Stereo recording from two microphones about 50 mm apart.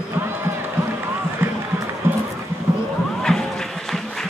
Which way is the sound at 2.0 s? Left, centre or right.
Right.